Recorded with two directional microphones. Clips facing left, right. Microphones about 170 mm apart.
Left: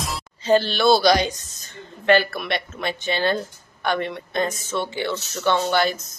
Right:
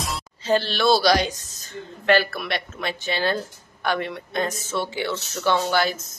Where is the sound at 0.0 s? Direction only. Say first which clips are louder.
Left 1 dB; centre (ahead or behind).